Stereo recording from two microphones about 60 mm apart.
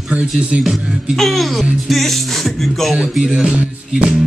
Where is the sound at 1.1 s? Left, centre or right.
Centre.